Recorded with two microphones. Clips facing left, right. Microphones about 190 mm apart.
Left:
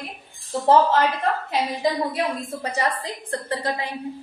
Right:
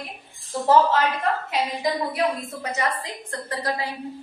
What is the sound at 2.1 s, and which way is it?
A woman's voice, 30° left (ahead or behind).